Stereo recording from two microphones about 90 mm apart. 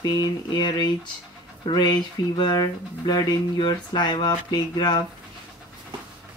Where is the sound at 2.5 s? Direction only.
45° left (ahead or behind).